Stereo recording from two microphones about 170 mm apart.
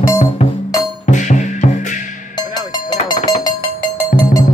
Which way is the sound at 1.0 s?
45° left (ahead or behind).